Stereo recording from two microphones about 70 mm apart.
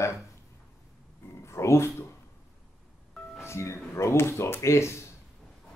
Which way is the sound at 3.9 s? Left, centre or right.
Left.